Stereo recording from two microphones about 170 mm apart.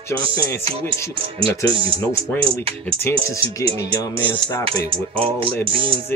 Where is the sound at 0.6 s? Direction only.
35° right (ahead or behind).